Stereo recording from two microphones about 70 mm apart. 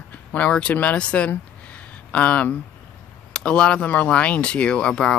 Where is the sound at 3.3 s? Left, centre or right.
Centre.